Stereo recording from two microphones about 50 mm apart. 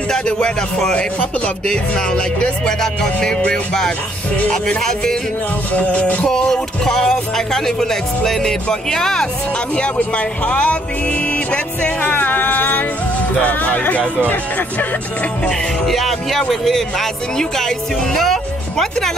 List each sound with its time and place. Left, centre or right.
0.1 s speech: centre
0.9 s music: left
1.7 s speech: centre
4.5 s speech: centre
5.7 s music: left
6.2 s speech: centre
10.1 s music: left
13.4 s speech: left
15.8 s speech: centre